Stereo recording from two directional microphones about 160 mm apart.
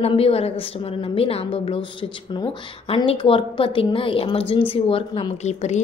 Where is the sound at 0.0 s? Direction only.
35° left (ahead or behind).